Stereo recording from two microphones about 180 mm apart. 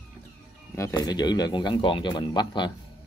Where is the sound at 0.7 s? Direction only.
20° left (ahead or behind).